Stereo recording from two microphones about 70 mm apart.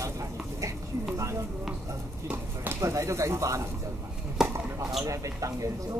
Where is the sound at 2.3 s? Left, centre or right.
Right.